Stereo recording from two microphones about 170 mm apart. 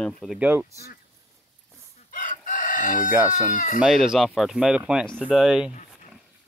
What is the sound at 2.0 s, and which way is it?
Chicken, 50° left (ahead or behind).